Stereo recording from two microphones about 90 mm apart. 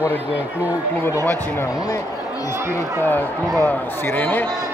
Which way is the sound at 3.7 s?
20° left (ahead or behind).